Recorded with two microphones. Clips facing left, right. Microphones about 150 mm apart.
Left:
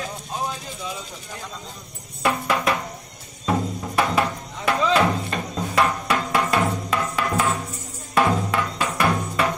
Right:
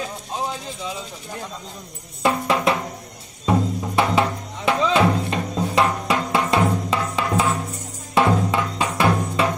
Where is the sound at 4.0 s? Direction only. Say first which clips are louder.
Right 2 dB; 25° right (ahead or behind).